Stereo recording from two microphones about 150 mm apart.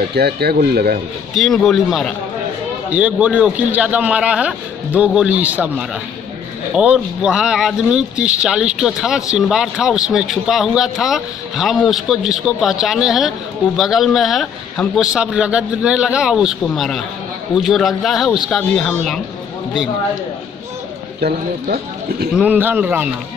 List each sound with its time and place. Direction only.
0.1 s speech: 90° right
1.3 s speech: centre (ahead or behind)
2.9 s a man's voice: 10° right (ahead or behind)
21.2 s speech: 90° right
22.3 s a man's voice: 10° right (ahead or behind)